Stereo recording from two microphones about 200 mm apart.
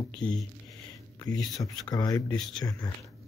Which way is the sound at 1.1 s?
20° left (ahead or behind).